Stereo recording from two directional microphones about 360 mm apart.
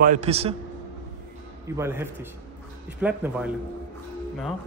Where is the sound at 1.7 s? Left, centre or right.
Centre.